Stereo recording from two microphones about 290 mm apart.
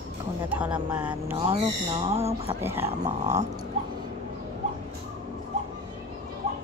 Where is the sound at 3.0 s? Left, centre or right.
Right.